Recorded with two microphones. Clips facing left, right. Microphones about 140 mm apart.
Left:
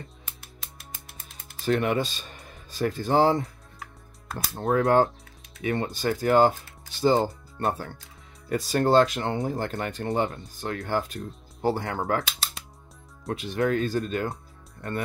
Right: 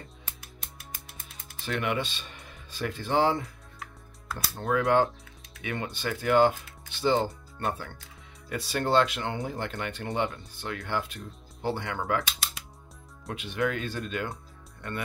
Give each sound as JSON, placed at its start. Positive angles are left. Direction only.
{"t": 1.7, "sound": "speech", "side_deg": 40}
{"t": 13.3, "sound": "speech", "side_deg": 40}